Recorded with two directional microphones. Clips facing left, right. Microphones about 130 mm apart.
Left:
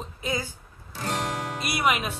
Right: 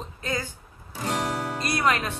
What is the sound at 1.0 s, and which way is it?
Music, 5° right (ahead or behind).